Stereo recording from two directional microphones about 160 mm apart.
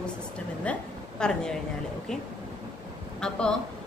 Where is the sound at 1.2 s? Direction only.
5° left (ahead or behind).